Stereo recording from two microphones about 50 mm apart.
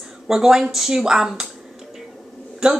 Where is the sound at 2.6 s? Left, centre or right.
Centre.